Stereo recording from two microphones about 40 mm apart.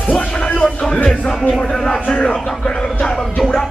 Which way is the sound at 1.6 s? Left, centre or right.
Centre.